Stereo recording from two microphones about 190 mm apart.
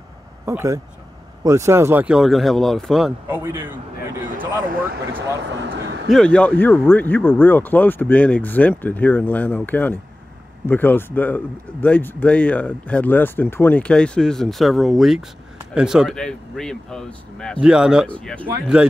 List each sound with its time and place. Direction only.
0.5 s a man's voice: 15° right (ahead or behind); by 3.1 s centre (ahead or behind)
3.3 s a man's voice: 10° right (ahead or behind)
4.6 s speech: 50° right (ahead or behind)
5.4 s speech: 65° right (ahead or behind)
6.0 s speech: 5° left (ahead or behind)
18.0 s speech: 5° left (ahead or behind)